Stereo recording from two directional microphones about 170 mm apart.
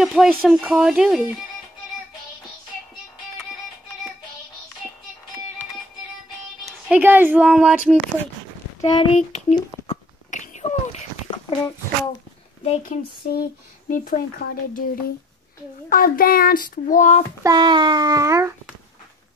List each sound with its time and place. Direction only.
0.0 s speech: centre (ahead or behind)
6.6 s speech: 10° right (ahead or behind)
8.8 s a child's voice: 30° left (ahead or behind)
10.3 s a sound: 45° left (ahead or behind)
11.2 s a sound: 30° left (ahead or behind)
12.6 s a child's voice: 40° left (ahead or behind)
13.3 s speech: 55° left (ahead or behind)
15.9 s speech: 55° left (ahead or behind)
17.4 s a sound: 25° right (ahead or behind)